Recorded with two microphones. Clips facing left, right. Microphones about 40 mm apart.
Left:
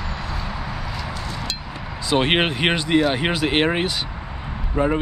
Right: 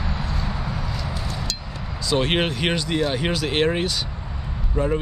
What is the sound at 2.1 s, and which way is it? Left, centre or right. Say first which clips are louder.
Speech: left 3 dB; left.